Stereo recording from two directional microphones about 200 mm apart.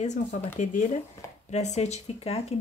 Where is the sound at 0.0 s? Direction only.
35° left (ahead or behind).